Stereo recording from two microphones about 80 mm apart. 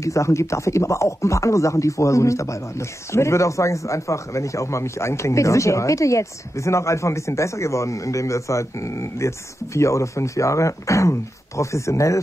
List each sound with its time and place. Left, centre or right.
0.0 s speech: left